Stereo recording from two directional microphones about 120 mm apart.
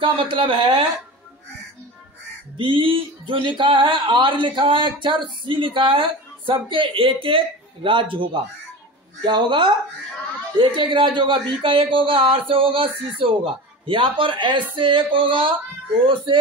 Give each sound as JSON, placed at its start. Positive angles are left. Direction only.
{"t": 0.0, "sound": "speech", "side_deg": -45}
{"t": 2.5, "sound": "speech", "side_deg": -45}